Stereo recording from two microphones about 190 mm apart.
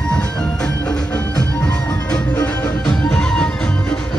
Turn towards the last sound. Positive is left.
turn(degrees=5)  # may be behind; listen again after turning